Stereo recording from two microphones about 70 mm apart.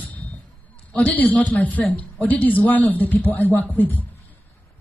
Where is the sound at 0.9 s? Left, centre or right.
Left.